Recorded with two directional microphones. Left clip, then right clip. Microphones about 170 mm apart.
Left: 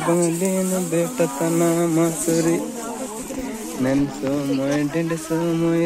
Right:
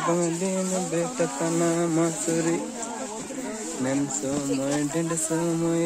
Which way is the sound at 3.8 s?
Centre (ahead or behind).